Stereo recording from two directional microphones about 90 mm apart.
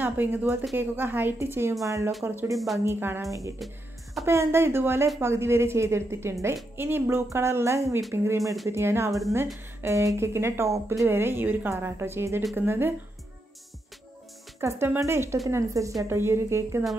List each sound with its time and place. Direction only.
0.0 s a woman's voice: 20° right (ahead or behind)
2.5 s speech: centre (ahead or behind)
2.8 s a woman's voice: 25° right (ahead or behind)
3.5 s music: centre (ahead or behind)
4.3 s a woman's voice: 30° right (ahead or behind)
14.6 s a woman's voice: 35° right (ahead or behind)